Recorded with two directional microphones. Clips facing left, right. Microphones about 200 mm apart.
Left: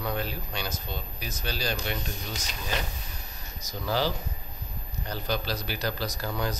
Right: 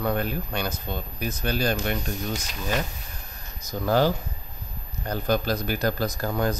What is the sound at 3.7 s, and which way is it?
Speech, 50° right (ahead or behind).